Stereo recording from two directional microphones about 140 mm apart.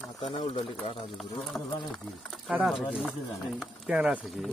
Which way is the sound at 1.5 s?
20° left (ahead or behind).